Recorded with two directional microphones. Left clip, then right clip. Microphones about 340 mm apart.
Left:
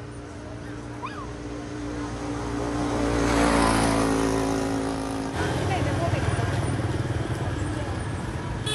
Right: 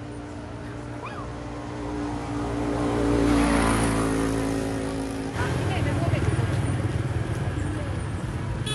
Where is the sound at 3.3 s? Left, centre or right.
Left.